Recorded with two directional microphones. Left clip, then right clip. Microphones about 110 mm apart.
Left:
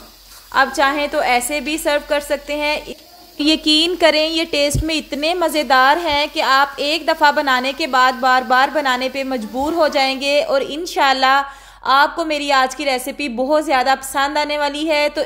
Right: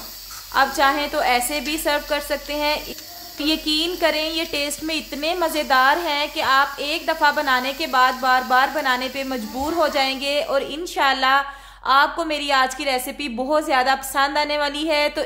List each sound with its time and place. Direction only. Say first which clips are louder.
0.6 s a woman's voice: left 3 dB; 30° left (ahead or behind)
3.3 s a woman's voice: left 7 dB; 65° left (ahead or behind); by 15.2 s 25° left (ahead or behind)